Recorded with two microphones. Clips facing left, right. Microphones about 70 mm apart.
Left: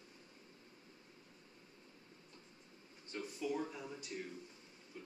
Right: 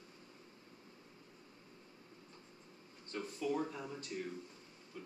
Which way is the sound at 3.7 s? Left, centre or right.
Right.